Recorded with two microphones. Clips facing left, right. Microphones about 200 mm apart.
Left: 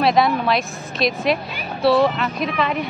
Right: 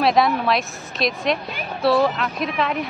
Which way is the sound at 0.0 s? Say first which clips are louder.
Left 1 dB; centre (ahead or behind).